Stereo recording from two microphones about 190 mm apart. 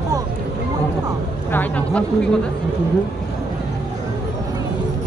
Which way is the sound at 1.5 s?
10° left (ahead or behind).